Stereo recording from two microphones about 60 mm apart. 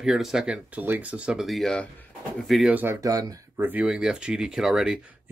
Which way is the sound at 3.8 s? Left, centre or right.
Centre.